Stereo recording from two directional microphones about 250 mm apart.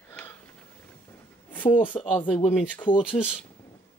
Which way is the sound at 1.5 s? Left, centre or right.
Centre.